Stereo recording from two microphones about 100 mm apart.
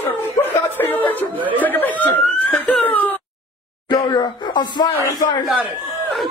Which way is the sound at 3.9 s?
45° left (ahead or behind).